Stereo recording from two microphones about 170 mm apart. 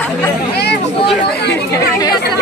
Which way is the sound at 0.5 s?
75° left (ahead or behind).